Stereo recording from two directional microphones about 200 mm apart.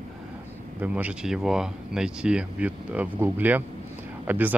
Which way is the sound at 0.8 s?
5° right (ahead or behind).